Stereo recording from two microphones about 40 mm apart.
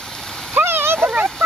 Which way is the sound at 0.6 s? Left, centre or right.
Right.